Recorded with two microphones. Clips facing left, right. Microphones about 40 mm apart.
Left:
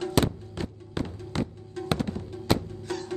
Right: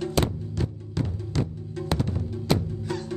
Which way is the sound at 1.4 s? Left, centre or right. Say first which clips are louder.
Right 1 dB; centre.